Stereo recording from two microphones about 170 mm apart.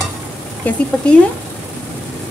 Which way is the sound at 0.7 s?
5° left (ahead or behind).